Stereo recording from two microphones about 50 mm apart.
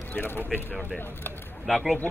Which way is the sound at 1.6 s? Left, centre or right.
Centre.